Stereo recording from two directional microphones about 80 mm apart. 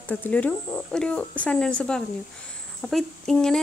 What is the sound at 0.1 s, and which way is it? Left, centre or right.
Speech, centre.